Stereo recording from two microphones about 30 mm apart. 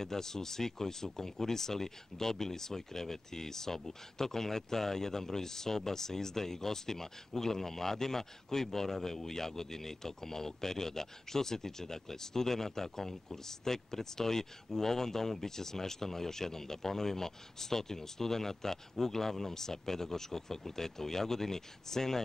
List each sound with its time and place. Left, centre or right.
0.0 s speech: centre